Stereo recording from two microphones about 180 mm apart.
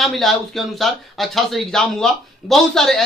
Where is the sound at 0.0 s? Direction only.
Centre (ahead or behind).